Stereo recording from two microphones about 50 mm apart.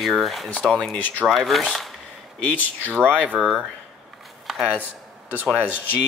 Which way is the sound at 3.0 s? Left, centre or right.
Right.